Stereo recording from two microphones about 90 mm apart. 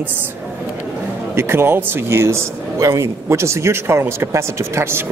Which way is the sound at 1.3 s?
25° right (ahead or behind).